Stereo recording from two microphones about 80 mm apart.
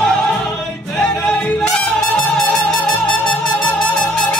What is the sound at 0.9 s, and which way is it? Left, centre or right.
Music, centre.